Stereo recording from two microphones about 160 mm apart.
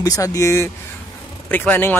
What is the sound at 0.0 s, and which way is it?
Speech, 20° left (ahead or behind).